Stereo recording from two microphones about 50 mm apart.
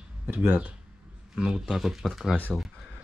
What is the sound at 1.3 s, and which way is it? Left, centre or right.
Speech, centre.